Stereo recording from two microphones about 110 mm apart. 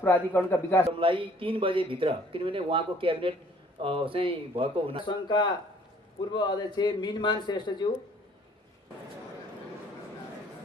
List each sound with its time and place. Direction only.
0.0 s a man's voice: 15° left (ahead or behind)
0.8 s speech: 55° right (ahead or behind)
5.0 s a man's voice: 45° left (ahead or behind)